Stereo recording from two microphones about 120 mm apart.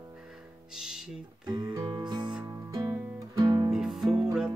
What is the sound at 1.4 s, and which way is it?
Music, 35° right (ahead or behind).